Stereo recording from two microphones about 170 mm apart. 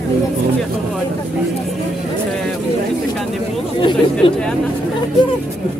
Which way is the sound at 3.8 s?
30° left (ahead or behind).